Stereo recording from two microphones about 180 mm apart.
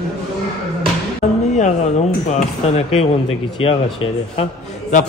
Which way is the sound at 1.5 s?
40° left (ahead or behind).